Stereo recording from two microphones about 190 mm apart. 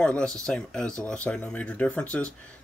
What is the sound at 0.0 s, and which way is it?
Speech, 5° left (ahead or behind).